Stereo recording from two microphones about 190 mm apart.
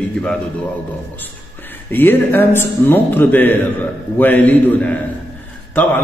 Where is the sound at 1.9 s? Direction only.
10° left (ahead or behind).